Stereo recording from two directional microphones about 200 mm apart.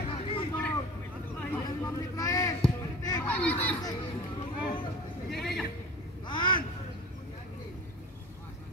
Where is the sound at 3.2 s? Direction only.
5° left (ahead or behind).